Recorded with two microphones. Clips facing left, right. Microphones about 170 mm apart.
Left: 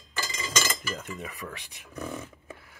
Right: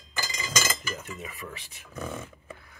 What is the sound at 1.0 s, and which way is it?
Speech, centre (ahead or behind).